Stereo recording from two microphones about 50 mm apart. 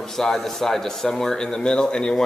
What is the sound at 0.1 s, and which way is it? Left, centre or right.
A man's voice, centre.